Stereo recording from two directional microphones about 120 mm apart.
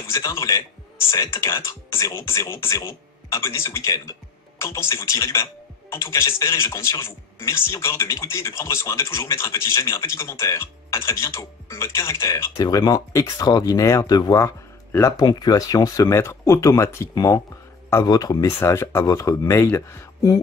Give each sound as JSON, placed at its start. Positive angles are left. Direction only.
{"t": 0.0, "sound": "speech", "side_deg": 25}